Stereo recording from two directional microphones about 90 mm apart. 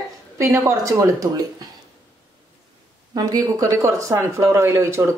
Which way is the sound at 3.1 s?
45° right (ahead or behind).